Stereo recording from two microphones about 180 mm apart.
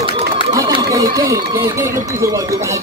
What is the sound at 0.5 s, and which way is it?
Speech, 20° right (ahead or behind).